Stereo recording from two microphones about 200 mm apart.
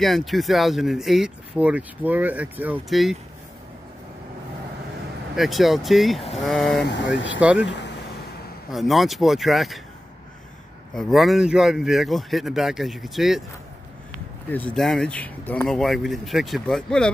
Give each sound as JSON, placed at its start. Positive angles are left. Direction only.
{"t": 0.0, "sound": "speech", "side_deg": 0}
{"t": 5.3, "sound": "speech", "side_deg": 0}
{"t": 6.9, "sound": "speech", "side_deg": 65}
{"t": 7.3, "sound": "speech", "side_deg": -5}
{"t": 11.0, "sound": "speech", "side_deg": 0}
{"t": 14.5, "sound": "speech", "side_deg": 5}